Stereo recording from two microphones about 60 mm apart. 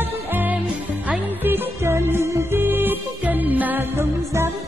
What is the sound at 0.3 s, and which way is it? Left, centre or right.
Music, right.